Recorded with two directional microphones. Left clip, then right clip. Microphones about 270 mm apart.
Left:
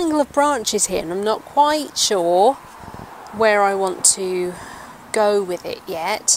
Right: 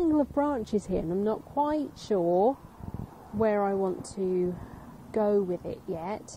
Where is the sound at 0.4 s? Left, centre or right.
Centre.